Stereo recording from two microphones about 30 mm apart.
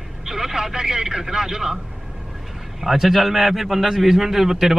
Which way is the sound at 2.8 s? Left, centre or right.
Centre.